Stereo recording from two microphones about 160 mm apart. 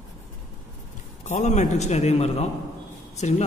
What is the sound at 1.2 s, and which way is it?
A man's voice, 45° left (ahead or behind).